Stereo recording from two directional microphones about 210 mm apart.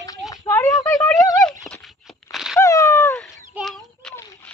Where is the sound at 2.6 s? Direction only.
15° left (ahead or behind).